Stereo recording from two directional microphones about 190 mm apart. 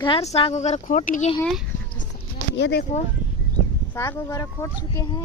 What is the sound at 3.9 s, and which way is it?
Speech, 15° left (ahead or behind).